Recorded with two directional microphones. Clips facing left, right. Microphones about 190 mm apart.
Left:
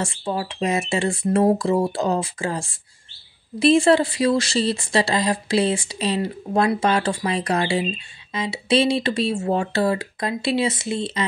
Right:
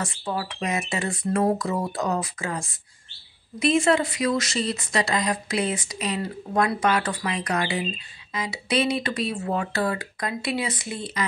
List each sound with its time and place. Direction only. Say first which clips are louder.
0.0 s speech: left 4 dB; 25° left (ahead or behind)